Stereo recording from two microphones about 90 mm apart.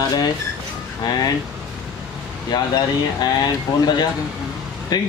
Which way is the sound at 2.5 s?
50° left (ahead or behind).